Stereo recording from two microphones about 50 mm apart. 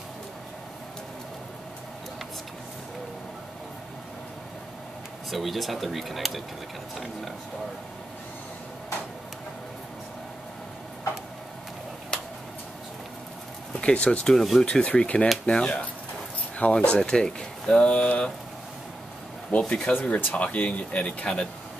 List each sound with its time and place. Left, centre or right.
5.3 s speech: centre
12.1 s a sound: centre
13.7 s speech: left
14.2 s speech: centre
14.7 s speech: centre
19.7 s speech: left
20.2 s speech: left
20.4 s speech: left